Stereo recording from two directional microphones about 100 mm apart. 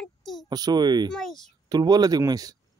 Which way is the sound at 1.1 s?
5° left (ahead or behind).